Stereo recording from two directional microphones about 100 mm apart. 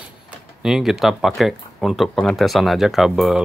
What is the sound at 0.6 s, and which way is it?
Speech, 5° right (ahead or behind).